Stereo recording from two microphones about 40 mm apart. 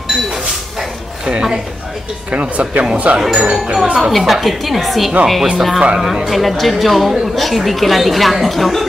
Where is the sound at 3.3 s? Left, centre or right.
Right.